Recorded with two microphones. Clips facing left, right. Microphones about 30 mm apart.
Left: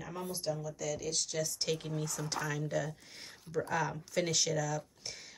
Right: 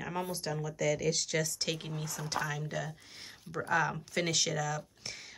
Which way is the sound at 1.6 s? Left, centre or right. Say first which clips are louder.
Left 1 dB; right.